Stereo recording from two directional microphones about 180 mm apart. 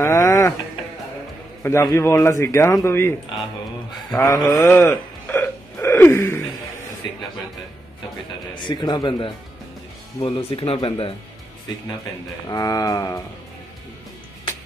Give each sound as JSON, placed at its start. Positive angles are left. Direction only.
{"t": 0.0, "sound": "music", "side_deg": 20}
{"t": 1.6, "sound": "a man's voice", "side_deg": 15}
{"t": 8.5, "sound": "speech", "side_deg": 25}
{"t": 12.4, "sound": "speech", "side_deg": 20}